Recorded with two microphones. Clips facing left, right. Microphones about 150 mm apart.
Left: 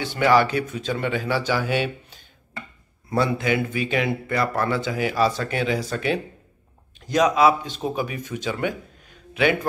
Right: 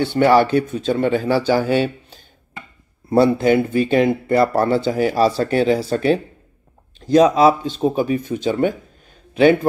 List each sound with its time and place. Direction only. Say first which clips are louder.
0.3 s speech: right 2 dB; 55° right (ahead or behind)
0.6 s a man's voice: right 7 dB; 35° right (ahead or behind)